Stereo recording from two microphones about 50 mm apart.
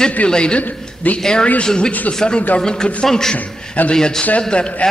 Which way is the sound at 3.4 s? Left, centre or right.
Left.